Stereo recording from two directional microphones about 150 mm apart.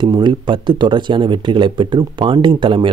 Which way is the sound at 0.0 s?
30° right (ahead or behind).